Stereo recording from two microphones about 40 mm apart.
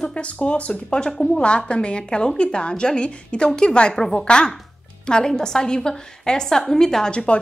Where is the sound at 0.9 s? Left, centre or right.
Left.